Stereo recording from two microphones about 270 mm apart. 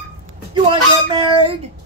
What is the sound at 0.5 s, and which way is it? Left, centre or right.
A man's voice, centre.